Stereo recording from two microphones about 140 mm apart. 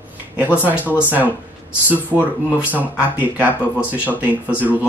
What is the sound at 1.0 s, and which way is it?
Speech, 15° right (ahead or behind).